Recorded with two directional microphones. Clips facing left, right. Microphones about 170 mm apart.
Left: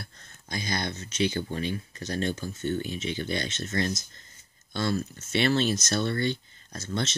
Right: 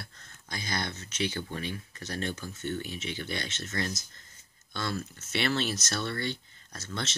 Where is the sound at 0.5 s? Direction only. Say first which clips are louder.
Left 4 dB; 20° left (ahead or behind).